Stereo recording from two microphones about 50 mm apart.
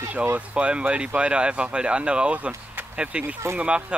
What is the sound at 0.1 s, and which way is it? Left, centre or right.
Speech, right.